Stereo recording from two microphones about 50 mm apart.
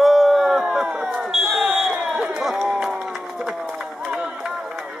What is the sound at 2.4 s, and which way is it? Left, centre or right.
Run, centre.